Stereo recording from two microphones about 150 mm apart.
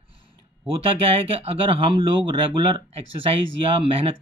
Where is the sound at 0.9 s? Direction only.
40° right (ahead or behind).